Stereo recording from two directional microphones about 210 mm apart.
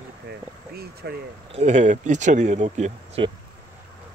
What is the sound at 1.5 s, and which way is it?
Speech, 35° right (ahead or behind).